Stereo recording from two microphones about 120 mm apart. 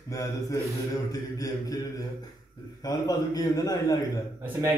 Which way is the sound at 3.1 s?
35° left (ahead or behind).